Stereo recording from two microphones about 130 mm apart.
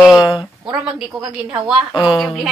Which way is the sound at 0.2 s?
35° left (ahead or behind).